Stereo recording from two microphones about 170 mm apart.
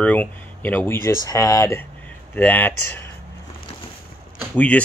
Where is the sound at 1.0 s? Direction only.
20° left (ahead or behind).